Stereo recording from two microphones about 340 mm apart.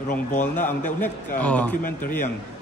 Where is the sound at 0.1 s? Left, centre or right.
Left.